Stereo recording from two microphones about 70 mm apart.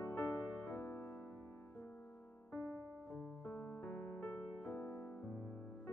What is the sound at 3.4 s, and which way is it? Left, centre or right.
Music, left.